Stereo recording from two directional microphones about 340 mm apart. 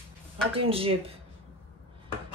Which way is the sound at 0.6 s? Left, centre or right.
Centre.